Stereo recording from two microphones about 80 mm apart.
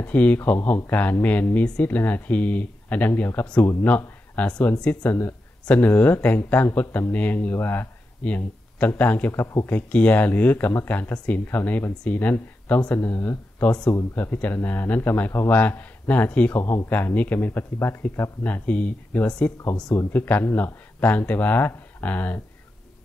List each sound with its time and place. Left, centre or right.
0.0 s a man's voice: centre
9.3 s speech: left
9.7 s a man's voice: centre